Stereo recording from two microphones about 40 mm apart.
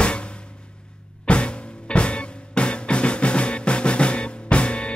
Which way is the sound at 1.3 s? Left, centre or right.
Left.